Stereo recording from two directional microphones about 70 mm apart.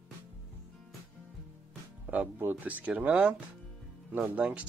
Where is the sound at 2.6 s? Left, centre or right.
Right.